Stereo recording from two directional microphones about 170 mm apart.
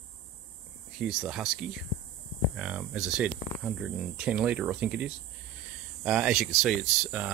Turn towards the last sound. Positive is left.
turn(degrees=-5)  # may be behind; listen again after turning